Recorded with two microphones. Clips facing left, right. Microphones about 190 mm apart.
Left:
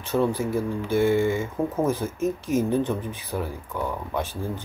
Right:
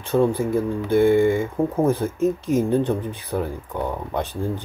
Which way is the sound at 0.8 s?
15° right (ahead or behind).